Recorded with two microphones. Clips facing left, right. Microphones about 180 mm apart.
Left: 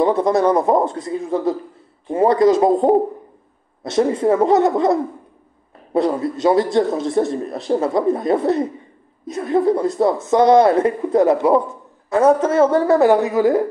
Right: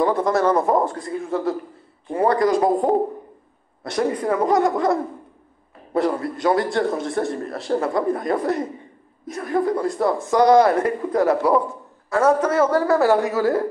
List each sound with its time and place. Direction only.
0.0 s a man's voice: 20° left (ahead or behind)